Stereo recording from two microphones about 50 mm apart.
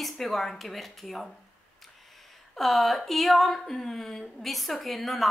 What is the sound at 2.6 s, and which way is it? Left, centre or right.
Speech, centre.